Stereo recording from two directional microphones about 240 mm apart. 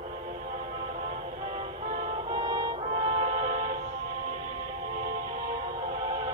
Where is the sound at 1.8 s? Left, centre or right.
Right.